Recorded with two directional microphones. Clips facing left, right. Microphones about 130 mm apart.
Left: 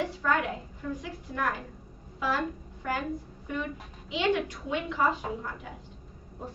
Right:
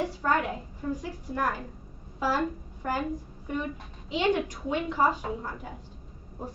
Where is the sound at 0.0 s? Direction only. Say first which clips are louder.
Right 1 dB; 35° right (ahead or behind).